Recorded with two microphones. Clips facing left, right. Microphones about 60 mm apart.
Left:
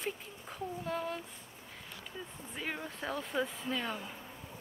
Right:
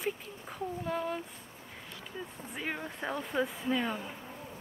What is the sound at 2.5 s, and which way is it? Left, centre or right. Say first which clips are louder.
Speech: right 2 dB; centre.